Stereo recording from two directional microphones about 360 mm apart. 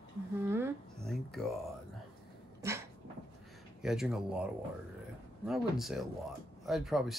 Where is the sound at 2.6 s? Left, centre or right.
Centre.